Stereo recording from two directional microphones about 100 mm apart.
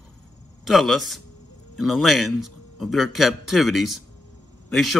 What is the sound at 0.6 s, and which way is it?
Speech, centre (ahead or behind).